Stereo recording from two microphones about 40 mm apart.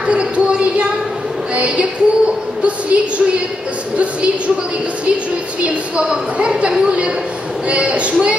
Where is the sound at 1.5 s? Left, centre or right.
Right.